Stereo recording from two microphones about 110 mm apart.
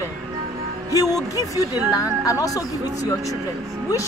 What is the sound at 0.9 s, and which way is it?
Speech, 35° left (ahead or behind).